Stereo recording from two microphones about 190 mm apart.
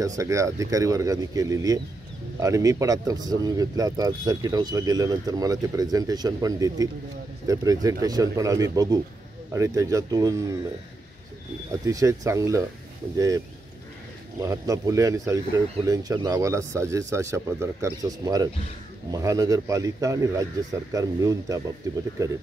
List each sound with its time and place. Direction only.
0.0 s speech: 15° right (ahead or behind)
11.8 s speech: 15° right (ahead or behind)
14.4 s speech: 15° right (ahead or behind)